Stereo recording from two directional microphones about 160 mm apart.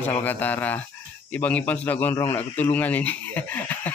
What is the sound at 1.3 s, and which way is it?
A man's voice, 10° left (ahead or behind).